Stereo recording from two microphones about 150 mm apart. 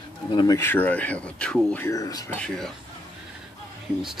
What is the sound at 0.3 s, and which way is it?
Speech, 30° left (ahead or behind).